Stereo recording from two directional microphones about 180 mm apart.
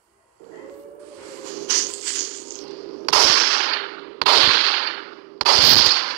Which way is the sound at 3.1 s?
50° right (ahead or behind).